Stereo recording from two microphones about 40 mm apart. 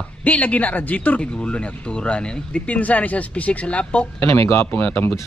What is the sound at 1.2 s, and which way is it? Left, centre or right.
A man's voice, left.